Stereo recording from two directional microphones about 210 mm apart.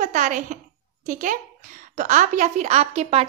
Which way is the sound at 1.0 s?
40° right (ahead or behind).